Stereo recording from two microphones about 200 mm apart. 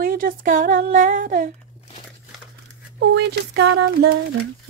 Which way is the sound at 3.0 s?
55° right (ahead or behind).